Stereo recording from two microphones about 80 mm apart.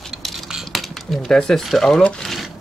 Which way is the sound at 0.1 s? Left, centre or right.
Centre.